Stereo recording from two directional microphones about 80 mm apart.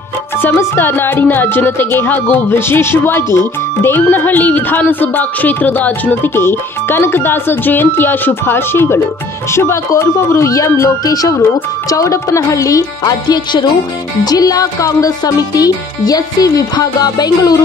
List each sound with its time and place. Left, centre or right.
0.4 s speech: left
11.9 s music: left
13.3 s music: left
14.2 s music: left